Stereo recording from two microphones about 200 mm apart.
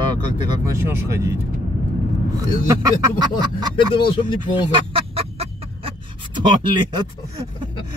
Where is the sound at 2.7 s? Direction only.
15° right (ahead or behind).